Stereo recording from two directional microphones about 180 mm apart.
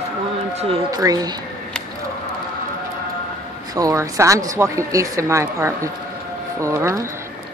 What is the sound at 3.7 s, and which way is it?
Speech, 15° right (ahead or behind).